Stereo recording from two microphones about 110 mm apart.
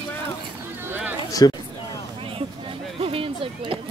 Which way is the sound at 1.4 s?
35° left (ahead or behind).